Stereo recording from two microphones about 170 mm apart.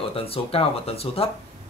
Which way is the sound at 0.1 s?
35° left (ahead or behind).